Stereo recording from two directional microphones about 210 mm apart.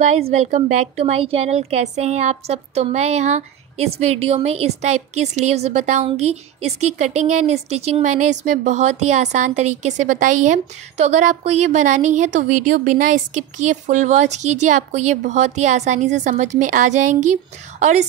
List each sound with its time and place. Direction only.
0.3 s a woman's voice: 35° right (ahead or behind)